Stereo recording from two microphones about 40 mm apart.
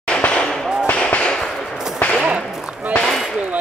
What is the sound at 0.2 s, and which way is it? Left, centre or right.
Fireworks, left.